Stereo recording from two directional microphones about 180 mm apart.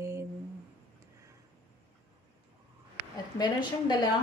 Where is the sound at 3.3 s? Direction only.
25° left (ahead or behind).